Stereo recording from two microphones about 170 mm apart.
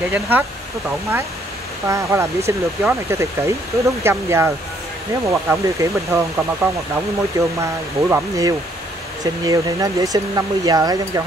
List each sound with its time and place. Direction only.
0.1 s speech: 10° right (ahead or behind)